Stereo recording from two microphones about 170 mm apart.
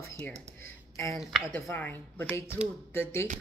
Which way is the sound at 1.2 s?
5° right (ahead or behind).